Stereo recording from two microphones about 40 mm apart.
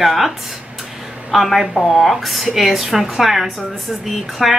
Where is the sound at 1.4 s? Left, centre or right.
Centre.